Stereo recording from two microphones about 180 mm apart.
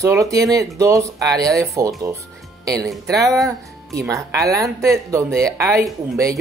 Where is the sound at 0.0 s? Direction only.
15° right (ahead or behind).